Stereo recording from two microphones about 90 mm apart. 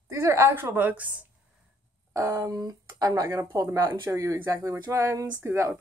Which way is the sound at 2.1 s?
35° right (ahead or behind).